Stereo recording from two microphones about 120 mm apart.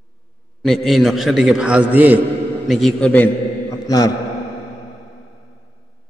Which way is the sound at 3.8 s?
35° left (ahead or behind).